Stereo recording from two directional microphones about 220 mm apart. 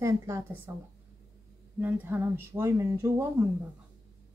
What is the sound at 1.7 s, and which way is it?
Speech, 10° right (ahead or behind).